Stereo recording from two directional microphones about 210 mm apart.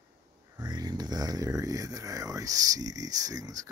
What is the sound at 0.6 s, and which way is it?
Speech, 20° right (ahead or behind).